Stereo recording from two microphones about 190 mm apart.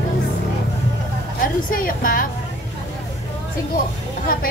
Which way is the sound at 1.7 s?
50° left (ahead or behind).